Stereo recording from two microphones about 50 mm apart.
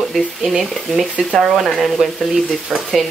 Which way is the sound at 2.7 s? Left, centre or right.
Centre.